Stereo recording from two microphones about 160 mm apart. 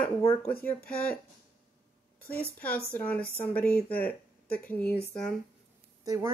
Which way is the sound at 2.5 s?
10° left (ahead or behind).